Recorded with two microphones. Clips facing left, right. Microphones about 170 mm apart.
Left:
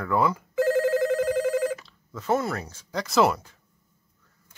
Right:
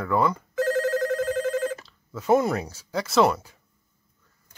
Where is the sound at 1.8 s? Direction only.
5° right (ahead or behind).